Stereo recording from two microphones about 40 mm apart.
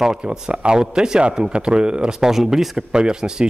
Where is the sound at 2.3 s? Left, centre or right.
Centre.